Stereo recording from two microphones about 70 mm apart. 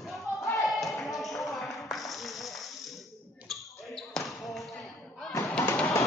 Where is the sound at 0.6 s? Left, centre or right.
Centre.